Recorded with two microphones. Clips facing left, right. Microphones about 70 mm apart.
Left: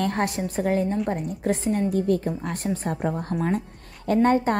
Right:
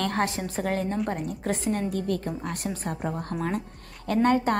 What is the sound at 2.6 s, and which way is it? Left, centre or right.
Speech, centre.